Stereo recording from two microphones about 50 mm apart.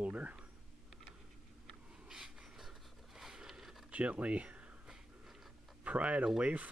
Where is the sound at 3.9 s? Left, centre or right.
Right.